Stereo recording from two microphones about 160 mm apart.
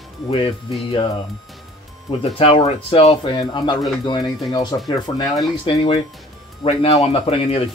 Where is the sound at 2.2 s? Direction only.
35° left (ahead or behind).